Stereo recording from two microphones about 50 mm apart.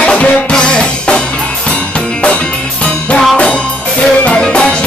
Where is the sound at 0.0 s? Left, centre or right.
Left.